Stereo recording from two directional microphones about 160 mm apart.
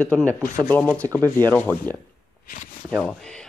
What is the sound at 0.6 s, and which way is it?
Speech, 10° left (ahead or behind).